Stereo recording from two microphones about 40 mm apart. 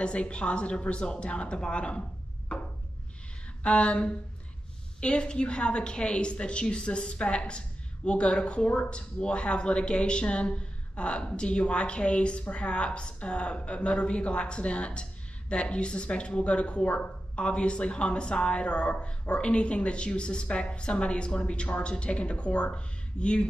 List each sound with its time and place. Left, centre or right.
0.0 s a woman's voice: left
2.5 s a sound: left
3.6 s a woman's voice: left